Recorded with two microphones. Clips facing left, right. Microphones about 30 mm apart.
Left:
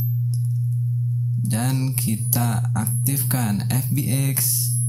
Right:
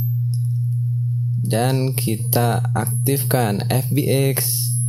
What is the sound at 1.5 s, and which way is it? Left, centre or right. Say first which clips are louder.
Speech: right 6 dB; right.